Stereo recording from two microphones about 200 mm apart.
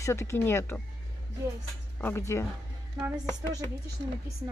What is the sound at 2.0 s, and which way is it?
Speech, 10° left (ahead or behind).